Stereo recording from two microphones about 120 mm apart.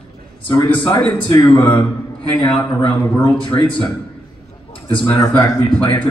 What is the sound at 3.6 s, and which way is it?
Speech, 45° left (ahead or behind).